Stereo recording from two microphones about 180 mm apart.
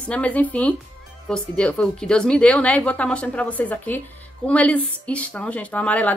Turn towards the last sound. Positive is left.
turn(degrees=10)  # may be behind; listen again after turning